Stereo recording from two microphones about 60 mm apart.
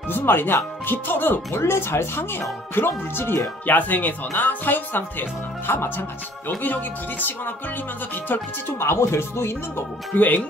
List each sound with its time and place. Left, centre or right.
0.1 s speech: left
8.7 s speech: left
10.1 s speech: left